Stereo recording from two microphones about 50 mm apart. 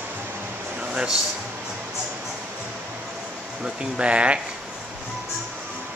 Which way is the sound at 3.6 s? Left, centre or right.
Right.